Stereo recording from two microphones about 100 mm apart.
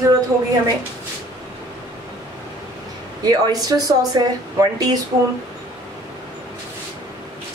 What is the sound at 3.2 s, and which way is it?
Speech, 40° right (ahead or behind).